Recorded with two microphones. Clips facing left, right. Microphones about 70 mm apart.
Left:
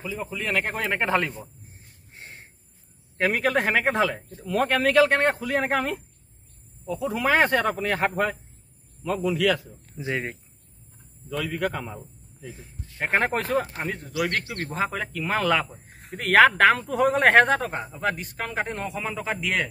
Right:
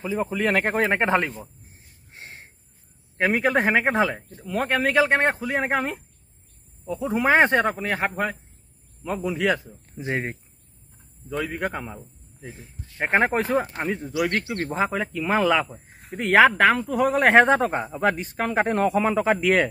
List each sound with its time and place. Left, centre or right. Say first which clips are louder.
0.0 s a man's voice: right 7 dB; right
3.2 s speech: right 2 dB; centre
7.7 s speech: left 1 dB; centre
9.0 s a man's voice: left 1 dB; right
11.2 s speech: even; right; by 17.5 s centre
17.9 s a man's voice: right 5 dB; right